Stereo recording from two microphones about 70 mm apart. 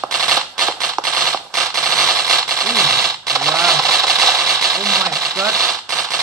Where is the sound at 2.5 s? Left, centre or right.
Right.